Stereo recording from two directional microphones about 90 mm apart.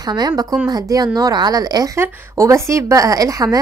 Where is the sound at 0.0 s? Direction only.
50° right (ahead or behind).